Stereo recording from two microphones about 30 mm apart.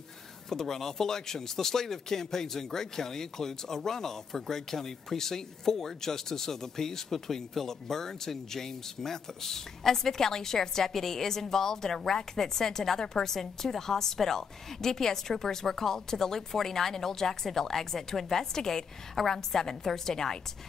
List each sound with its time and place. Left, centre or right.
0.5 s speech: centre